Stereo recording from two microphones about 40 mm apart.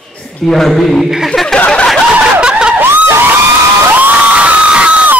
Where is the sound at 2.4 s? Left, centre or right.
Right.